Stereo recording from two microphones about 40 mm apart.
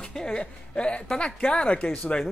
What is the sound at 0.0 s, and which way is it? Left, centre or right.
A woman's voice, centre.